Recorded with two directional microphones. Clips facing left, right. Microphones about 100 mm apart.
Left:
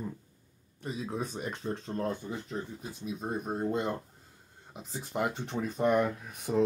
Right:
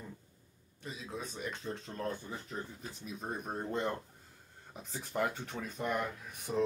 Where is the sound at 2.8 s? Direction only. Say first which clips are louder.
Left 6 dB; 5° left (ahead or behind).